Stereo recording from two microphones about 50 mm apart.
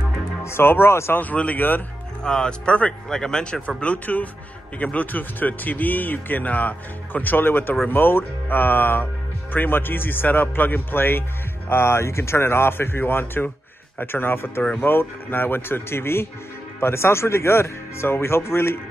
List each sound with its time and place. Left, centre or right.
0.4 s speech: left
1.3 s speech: left
3.6 s speech: left